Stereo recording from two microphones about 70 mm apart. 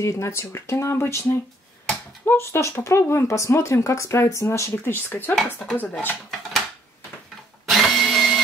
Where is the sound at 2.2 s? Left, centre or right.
Left.